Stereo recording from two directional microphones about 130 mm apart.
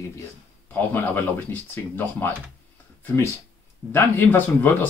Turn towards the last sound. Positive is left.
turn(degrees=15)  # may be behind; listen again after turning